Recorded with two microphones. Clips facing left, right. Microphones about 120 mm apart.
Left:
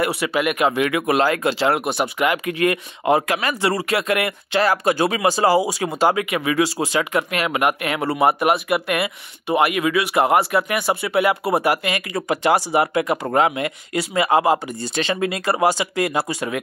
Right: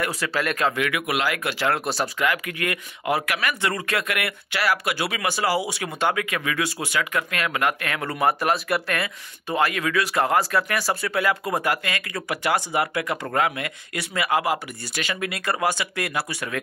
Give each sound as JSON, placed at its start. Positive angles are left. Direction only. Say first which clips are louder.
{"t": 0.2, "sound": "speech", "louder": "left 5 dB", "side_deg": 15}
{"t": 1.0, "sound": "speech", "louder": "left 7 dB", "side_deg": 35}
{"t": 4.6, "sound": "speech", "louder": "left 4 dB", "side_deg": 40}
{"t": 7.1, "sound": "speech", "louder": "left 5 dB", "side_deg": 20}